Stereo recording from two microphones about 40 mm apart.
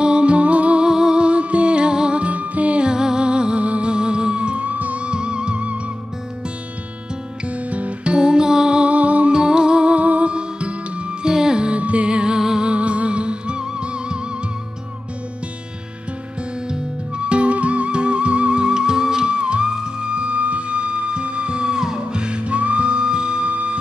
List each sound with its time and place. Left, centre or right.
0.0 s music: right
0.8 s music: centre
2.1 s music: right
2.9 s music: centre
7.4 s music: right
8.9 s music: right
9.3 s music: centre
12.4 s music: centre
12.6 s music: right
16.6 s music: right